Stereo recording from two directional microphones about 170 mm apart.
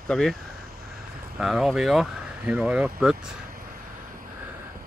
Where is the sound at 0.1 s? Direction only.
Centre (ahead or behind).